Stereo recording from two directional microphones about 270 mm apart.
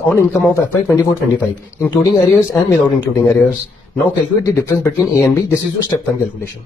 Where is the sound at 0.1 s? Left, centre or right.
Centre.